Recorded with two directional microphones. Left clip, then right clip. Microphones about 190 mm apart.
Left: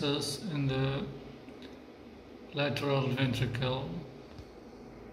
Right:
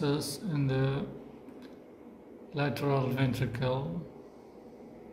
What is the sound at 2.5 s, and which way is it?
Speech, 15° right (ahead or behind).